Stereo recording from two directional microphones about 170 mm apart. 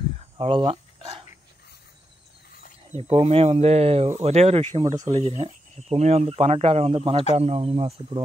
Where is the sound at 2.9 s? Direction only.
40° right (ahead or behind).